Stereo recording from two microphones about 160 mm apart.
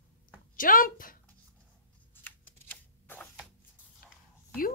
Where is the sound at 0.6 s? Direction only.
60° left (ahead or behind).